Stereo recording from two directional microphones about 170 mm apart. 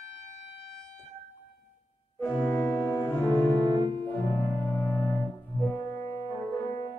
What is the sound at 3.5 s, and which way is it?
Music, 30° right (ahead or behind).